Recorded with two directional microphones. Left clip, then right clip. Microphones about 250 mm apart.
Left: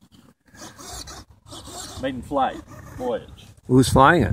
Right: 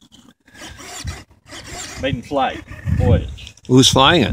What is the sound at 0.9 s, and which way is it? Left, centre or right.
Filing, centre.